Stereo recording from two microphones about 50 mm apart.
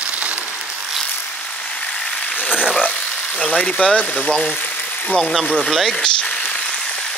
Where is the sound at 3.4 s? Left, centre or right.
Centre.